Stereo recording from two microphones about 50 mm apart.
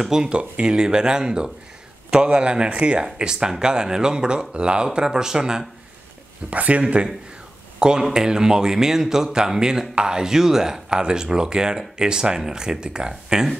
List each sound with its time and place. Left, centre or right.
0.0 s a man's voice: centre
6.5 s a man's voice: right